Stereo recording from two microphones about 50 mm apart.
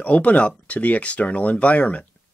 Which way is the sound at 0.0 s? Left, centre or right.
Left.